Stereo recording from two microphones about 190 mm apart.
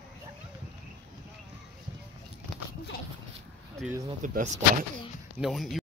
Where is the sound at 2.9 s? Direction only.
50° left (ahead or behind).